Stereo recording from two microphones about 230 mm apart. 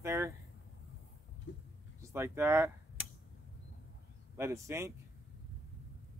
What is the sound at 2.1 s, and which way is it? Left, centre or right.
Speech, centre.